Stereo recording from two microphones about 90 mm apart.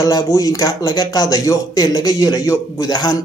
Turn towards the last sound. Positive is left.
turn(degrees=45)  # may be behind; listen again after turning